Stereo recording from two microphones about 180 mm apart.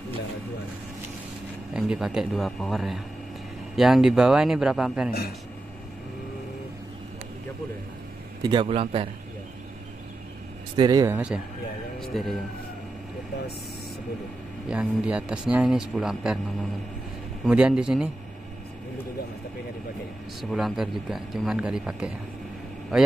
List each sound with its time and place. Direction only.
1.7 s a man's voice: 5° right (ahead or behind)
8.4 s a man's voice: 25° right (ahead or behind)
10.8 s a man's voice: 20° right (ahead or behind)
11.1 s a man's voice: 5° right (ahead or behind)
14.7 s a man's voice: 5° right (ahead or behind)
17.5 s a man's voice: 5° right (ahead or behind)
20.4 s a man's voice: centre (ahead or behind)